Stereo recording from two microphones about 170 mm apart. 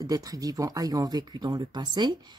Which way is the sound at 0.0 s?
20° right (ahead or behind).